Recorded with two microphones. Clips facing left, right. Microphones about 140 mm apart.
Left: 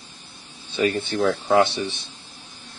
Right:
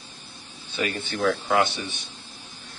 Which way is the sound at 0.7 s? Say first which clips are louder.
Left 7 dB; 35° left (ahead or behind).